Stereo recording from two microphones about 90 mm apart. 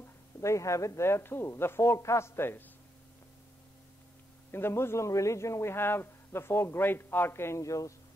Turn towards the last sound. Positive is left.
turn(degrees=35)  # may be behind; listen again after turning